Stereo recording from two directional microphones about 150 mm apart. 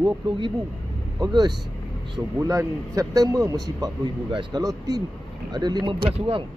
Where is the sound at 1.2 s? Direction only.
25° right (ahead or behind).